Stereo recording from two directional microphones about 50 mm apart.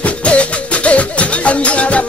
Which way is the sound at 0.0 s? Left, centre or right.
Left.